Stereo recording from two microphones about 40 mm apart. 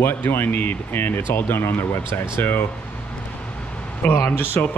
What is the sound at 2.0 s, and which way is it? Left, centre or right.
Speech, left.